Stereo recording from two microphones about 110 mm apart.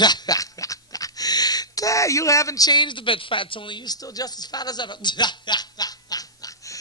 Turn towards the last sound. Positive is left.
turn(degrees=35)  # may be behind; listen again after turning